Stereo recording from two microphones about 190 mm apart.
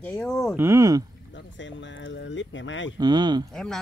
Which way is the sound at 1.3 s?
75° left (ahead or behind).